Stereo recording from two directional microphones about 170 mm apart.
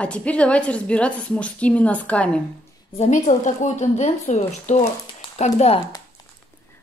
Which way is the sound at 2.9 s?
45° left (ahead or behind).